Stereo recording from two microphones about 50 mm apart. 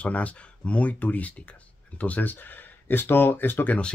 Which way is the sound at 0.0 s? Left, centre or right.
Left.